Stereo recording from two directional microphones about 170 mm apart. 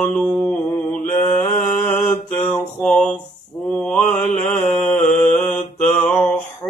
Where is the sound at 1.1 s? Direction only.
45° left (ahead or behind).